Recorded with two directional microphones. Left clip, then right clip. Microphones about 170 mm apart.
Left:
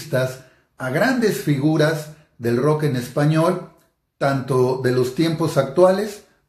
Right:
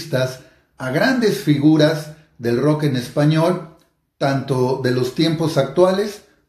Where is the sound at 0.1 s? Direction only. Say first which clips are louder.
Right 1 dB; 5° right (ahead or behind).